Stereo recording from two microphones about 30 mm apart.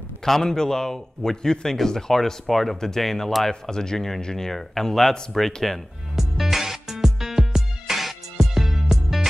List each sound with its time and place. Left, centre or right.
0.2 s a man's voice: centre
2.4 s a man's voice: centre
6.1 s music: centre